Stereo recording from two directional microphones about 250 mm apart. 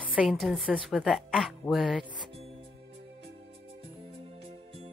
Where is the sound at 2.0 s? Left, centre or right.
Right.